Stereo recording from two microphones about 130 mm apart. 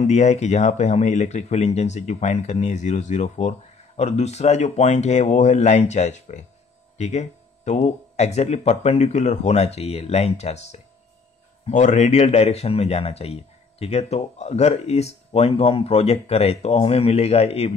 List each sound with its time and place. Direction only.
0.0 s speech: 70° left (ahead or behind); by 17.7 s 50° left (ahead or behind)